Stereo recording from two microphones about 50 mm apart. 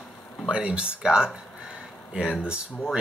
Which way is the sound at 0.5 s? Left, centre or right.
Centre.